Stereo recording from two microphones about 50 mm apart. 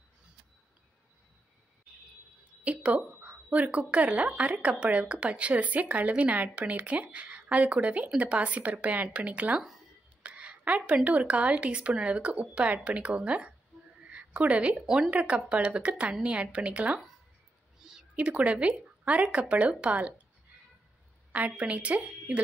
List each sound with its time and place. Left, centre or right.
2.6 s speech: right
10.2 s a sound: right
11.1 s speech: right
14.0 s a sound: right
14.9 s speech: right
18.1 s speech: right
21.5 s speech: right